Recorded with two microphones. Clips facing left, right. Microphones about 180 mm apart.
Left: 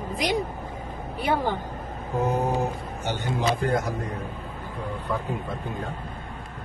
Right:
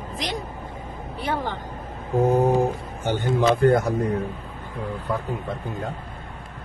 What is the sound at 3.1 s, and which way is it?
Speech, 50° right (ahead or behind).